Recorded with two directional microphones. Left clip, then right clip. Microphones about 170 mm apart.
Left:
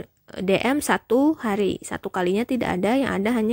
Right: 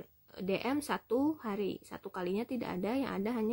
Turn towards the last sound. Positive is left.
turn(degrees=45)  # may be behind; listen again after turning